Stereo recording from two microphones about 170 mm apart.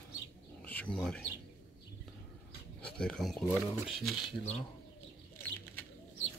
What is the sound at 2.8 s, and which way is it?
Speech, 5° left (ahead or behind).